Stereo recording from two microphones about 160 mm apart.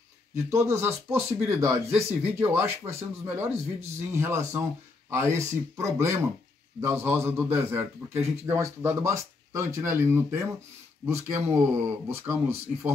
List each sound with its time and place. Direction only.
0.5 s a man's voice: 15° right (ahead or behind)